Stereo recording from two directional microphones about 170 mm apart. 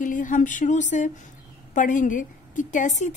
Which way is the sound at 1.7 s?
50° left (ahead or behind).